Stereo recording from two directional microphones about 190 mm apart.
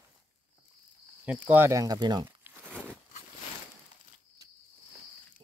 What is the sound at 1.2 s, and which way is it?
Speech, 10° right (ahead or behind).